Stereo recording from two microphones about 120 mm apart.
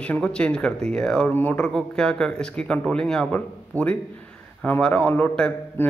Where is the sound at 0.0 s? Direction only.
10° left (ahead or behind).